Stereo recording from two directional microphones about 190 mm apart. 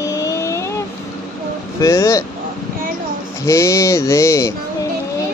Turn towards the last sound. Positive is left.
turn(degrees=15)  # may be behind; listen again after turning